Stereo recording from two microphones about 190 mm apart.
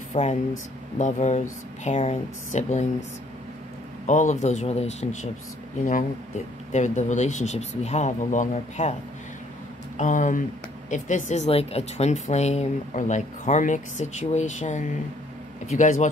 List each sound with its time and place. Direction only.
0.1 s speech: 35° left (ahead or behind)
4.0 s speech: 40° left (ahead or behind)
9.9 s speech: 40° left (ahead or behind)